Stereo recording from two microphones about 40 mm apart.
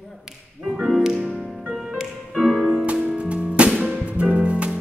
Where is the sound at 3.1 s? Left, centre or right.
Right.